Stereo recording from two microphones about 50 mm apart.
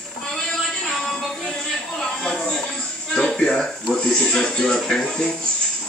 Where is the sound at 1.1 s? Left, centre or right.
Centre.